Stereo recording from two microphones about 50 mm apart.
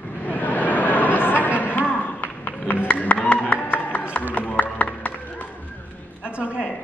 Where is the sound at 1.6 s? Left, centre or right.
Left.